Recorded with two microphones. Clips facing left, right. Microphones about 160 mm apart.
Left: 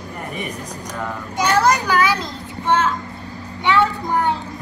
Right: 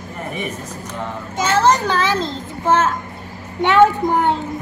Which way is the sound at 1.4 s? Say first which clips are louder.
Right 1 dB; 15° left (ahead or behind).